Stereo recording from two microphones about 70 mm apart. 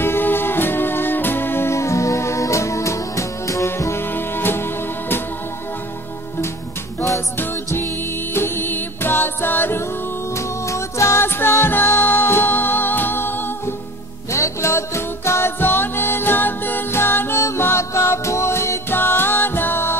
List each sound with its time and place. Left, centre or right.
0.0 s music: left
3.7 s music: left
7.3 s music: left
10.3 s music: left
11.2 s music: left
14.3 s music: left